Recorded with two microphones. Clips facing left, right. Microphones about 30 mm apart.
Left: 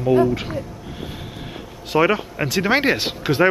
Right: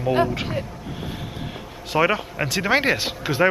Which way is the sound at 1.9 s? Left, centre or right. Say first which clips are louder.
Left 2 dB; centre.